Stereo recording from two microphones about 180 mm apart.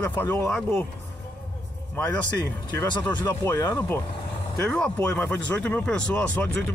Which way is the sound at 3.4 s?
20° left (ahead or behind).